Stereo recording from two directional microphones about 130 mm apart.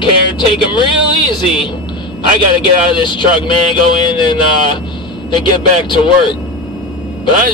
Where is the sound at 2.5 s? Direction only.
40° left (ahead or behind).